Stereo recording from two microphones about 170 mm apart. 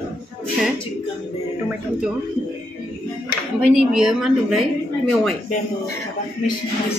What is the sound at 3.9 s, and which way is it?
Speech, 5° right (ahead or behind).